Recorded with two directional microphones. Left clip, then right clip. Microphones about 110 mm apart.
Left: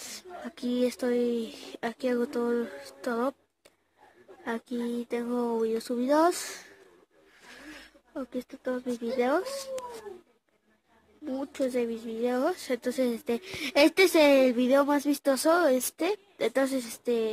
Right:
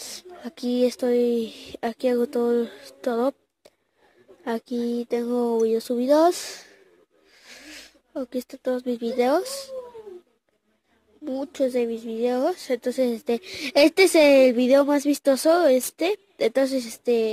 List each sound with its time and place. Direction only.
0.0 s speech: 40° right (ahead or behind)
11.2 s speech: 40° right (ahead or behind)